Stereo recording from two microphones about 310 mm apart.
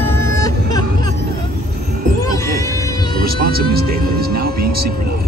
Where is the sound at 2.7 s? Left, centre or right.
Centre.